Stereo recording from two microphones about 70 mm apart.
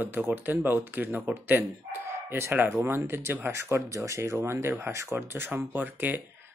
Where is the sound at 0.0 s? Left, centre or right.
Right.